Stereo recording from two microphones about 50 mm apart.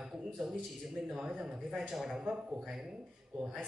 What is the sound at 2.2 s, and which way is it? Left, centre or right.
A man's voice, centre.